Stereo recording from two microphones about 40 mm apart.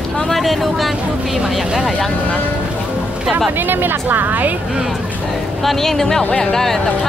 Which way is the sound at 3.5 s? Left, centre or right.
Right.